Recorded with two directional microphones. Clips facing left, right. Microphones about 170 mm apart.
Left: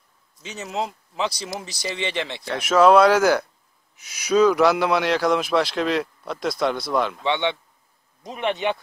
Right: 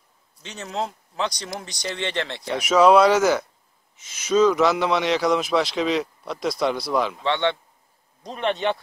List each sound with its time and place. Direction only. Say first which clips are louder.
0.4 s speech: left 1 dB; 5° left (ahead or behind)
7.2 s speech: even; 15° left (ahead or behind)